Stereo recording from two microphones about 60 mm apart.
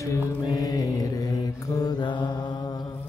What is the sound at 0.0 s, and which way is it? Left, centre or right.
Mantra, left.